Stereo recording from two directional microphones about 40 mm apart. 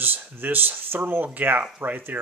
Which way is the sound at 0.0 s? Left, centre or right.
Right.